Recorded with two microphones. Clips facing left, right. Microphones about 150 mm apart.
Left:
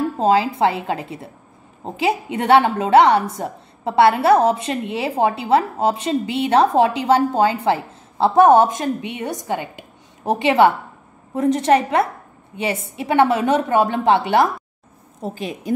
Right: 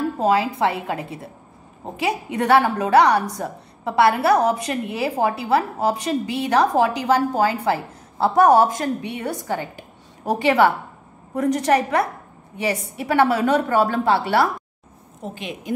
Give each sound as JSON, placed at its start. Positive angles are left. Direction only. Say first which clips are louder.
{"t": 0.2, "sound": "a woman's voice", "louder": "left 3 dB", "side_deg": 30}
{"t": 15.2, "sound": "a woman's voice", "louder": "left 4 dB", "side_deg": 35}